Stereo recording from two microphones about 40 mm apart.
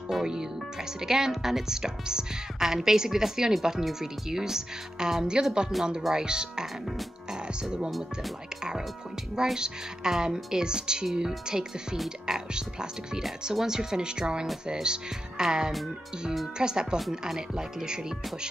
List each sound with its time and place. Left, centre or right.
0.1 s speech: centre
1.0 s a woman's voice: centre
9.6 s a woman's voice: centre